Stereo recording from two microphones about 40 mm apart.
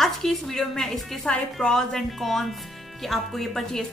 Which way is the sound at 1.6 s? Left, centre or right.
Centre.